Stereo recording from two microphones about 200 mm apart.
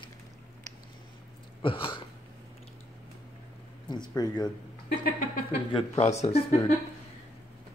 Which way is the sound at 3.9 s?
20° left (ahead or behind).